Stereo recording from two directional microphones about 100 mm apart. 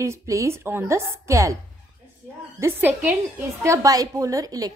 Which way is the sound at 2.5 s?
25° right (ahead or behind).